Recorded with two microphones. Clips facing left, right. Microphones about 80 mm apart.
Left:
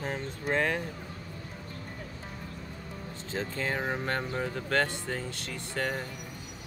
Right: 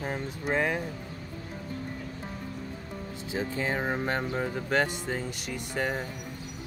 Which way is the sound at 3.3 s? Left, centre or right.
Centre.